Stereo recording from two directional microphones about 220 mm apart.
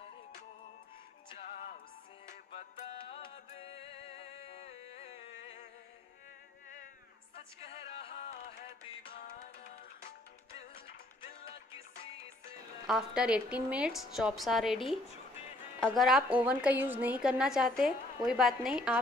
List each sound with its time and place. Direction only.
2.2 s music: 25° left (ahead or behind)
7.3 s music: 25° left (ahead or behind)
12.8 s a woman's voice: centre (ahead or behind)